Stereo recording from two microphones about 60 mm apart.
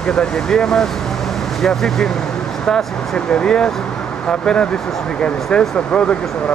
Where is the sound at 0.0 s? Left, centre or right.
Centre.